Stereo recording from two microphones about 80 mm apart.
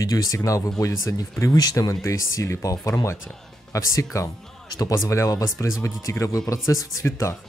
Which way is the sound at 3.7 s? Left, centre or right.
Left.